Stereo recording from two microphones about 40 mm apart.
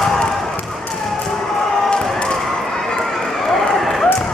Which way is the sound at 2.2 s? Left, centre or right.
Left.